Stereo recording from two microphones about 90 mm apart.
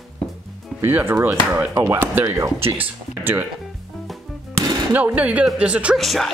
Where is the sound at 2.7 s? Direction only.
20° right (ahead or behind).